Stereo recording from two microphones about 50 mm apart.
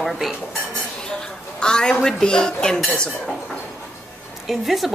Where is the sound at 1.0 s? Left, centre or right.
Centre.